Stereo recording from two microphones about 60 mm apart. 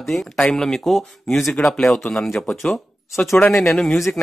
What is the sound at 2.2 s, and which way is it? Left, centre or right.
A man's voice, centre.